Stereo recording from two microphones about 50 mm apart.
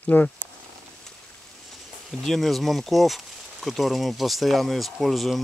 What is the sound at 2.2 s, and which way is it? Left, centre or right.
Speech, centre.